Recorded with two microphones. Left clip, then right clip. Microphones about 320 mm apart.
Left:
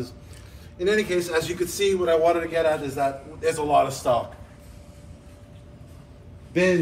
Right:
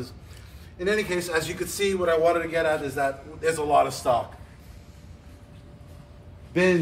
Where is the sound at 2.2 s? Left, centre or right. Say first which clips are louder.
Left 1 dB; centre.